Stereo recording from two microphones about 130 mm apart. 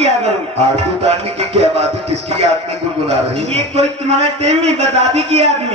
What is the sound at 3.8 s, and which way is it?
A man's voice, 55° right (ahead or behind).